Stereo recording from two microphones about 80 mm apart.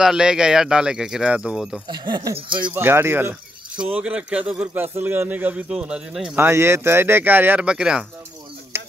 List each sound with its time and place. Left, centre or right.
0.0 s a man's voice: centre
1.9 s speech: right
2.7 s speech: right
3.7 s a man's voice: centre
6.3 s speech: right
7.6 s a man's voice: centre
8.7 s a sound: right